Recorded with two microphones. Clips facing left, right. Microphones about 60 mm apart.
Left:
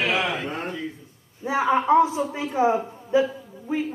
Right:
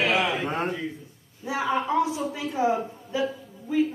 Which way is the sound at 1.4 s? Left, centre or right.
Left.